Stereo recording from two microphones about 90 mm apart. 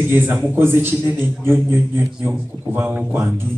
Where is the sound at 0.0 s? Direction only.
25° right (ahead or behind).